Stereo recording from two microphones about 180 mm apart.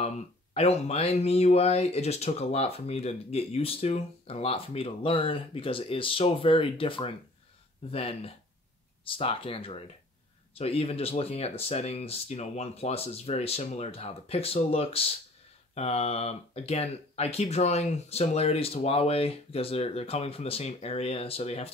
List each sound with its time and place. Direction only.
0.6 s speech: 35° left (ahead or behind)